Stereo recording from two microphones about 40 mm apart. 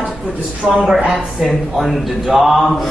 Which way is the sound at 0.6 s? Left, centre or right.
Centre.